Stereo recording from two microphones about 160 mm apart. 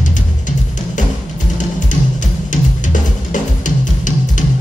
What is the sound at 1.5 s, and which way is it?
Drum, 55° left (ahead or behind).